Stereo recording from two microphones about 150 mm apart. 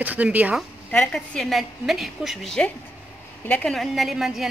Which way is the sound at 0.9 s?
5° left (ahead or behind).